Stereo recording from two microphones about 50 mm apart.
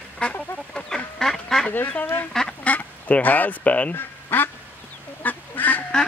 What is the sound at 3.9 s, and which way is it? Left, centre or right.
Quack, left.